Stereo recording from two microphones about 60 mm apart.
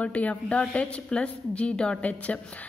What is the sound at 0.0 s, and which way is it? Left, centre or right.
A woman's voice, left.